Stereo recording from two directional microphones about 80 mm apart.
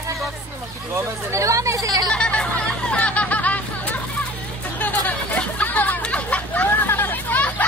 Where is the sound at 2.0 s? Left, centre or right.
Centre.